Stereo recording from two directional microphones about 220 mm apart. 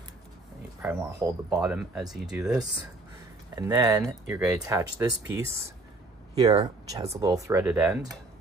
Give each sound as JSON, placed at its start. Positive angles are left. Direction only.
{"t": 1.5, "sound": "speech", "side_deg": -5}
{"t": 3.5, "sound": "speech", "side_deg": -15}